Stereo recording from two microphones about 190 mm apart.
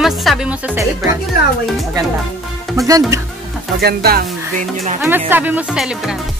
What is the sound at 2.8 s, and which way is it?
Speech, 15° right (ahead or behind).